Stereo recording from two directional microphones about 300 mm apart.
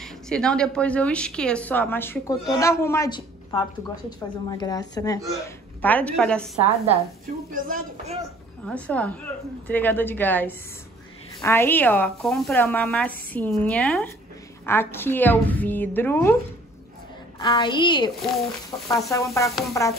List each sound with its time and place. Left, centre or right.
0.0 s speech: centre
4.5 s speech: centre
7.5 s speech: right
8.6 s speech: centre
17.4 s speech: centre